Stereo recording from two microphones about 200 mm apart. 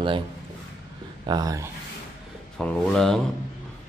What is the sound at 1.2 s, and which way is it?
Speech, 20° right (ahead or behind).